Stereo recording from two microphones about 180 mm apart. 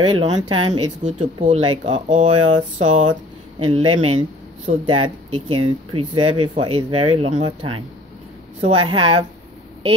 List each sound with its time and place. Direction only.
0.0 s speech: 25° right (ahead or behind)
1.0 s speech: 40° right (ahead or behind)
1.6 s speech: 25° right (ahead or behind)